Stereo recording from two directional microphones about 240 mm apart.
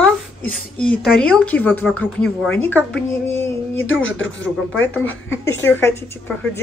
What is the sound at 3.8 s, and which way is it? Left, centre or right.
Speech, left.